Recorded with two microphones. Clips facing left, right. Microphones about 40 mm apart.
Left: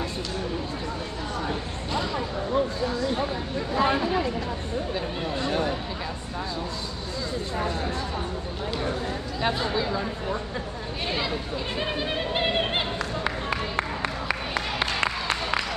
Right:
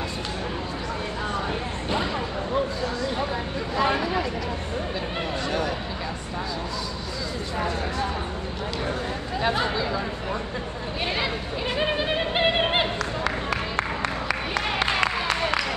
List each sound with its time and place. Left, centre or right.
1.5 s a sound: right
11.8 s yodeling: centre
13.2 s music: centre